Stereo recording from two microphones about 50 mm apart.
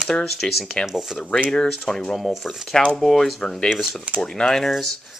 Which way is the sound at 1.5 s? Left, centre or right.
Centre.